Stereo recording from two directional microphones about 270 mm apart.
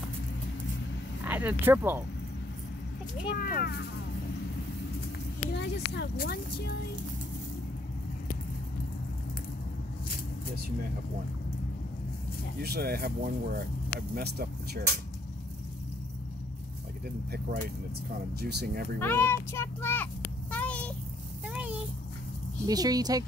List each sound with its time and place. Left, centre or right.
1.2 s speech: centre
3.3 s speech: left
5.5 s speech: left
12.6 s speech: right
18.4 s speech: right
18.9 s a child's voice: centre
20.5 s a sound: centre
22.7 s speech: centre